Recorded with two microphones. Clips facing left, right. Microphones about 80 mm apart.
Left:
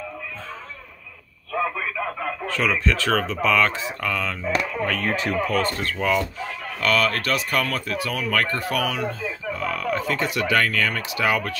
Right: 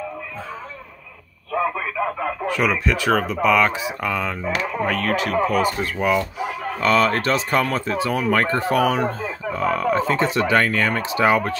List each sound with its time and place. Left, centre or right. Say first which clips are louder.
1.5 s telephone: right 3 dB; centre
3.3 s speech: right 3 dB; centre; by 11.5 s right